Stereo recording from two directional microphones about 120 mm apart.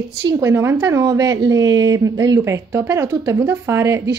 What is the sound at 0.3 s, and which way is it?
Speech, 25° right (ahead or behind).